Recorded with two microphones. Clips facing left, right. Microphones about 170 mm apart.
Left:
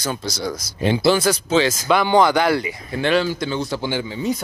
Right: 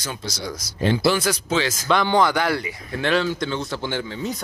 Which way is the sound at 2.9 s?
Centre (ahead or behind).